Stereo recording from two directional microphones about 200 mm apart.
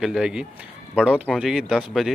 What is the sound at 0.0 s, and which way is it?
Speech, 5° right (ahead or behind).